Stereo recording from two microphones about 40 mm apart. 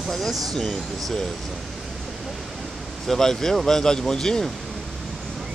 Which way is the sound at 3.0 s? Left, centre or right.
Centre.